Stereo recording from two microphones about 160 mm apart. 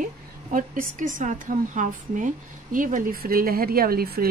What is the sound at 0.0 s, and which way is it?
A woman's voice, 60° right (ahead or behind).